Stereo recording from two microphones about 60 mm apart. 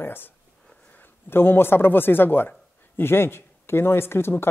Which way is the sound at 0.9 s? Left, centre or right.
Left.